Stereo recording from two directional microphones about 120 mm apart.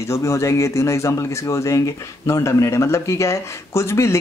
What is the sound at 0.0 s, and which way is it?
Speech, 25° left (ahead or behind).